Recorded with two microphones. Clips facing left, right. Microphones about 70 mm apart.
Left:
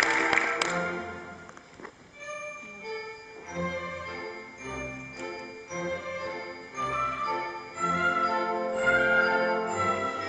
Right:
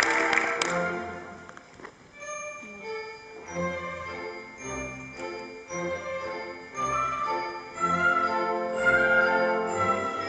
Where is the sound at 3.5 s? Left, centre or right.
Centre.